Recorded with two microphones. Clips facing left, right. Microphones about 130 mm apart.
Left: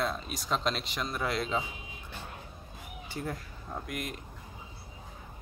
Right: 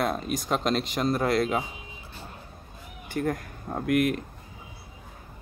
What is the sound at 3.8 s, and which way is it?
Speech, 70° right (ahead or behind).